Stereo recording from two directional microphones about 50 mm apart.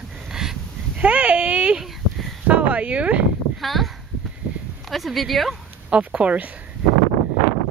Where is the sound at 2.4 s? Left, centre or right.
Right.